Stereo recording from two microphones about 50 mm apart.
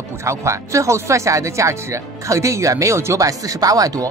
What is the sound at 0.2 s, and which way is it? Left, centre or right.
Speech, right.